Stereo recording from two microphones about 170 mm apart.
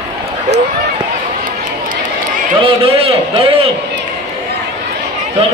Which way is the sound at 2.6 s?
35° right (ahead or behind).